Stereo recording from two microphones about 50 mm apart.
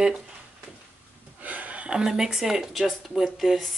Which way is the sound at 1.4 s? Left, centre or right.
Right.